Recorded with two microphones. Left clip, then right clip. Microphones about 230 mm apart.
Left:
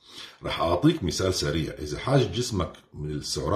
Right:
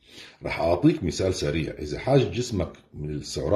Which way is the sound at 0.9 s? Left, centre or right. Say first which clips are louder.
Even; centre.